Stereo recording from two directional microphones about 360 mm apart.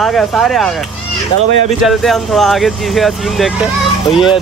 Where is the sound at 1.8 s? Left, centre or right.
Centre.